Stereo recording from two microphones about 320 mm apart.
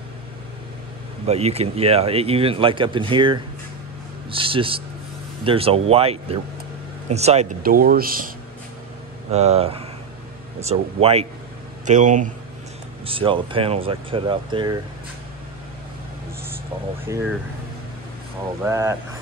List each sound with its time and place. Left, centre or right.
1.2 s speech: centre
9.3 s speech: centre
17.0 s speech: centre
18.6 s speech: centre